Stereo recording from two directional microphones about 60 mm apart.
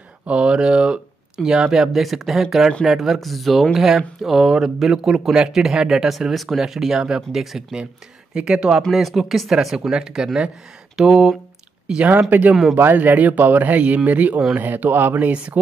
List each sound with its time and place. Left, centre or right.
0.3 s speech: centre
12.3 s a man's voice: right
15.3 s a man's voice: centre